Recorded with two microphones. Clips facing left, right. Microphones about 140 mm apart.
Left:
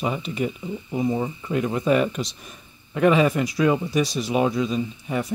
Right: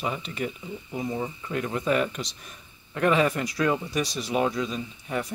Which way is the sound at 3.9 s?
5° left (ahead or behind).